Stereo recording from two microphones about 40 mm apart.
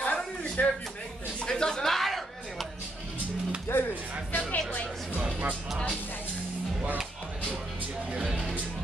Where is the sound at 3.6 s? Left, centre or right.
Left.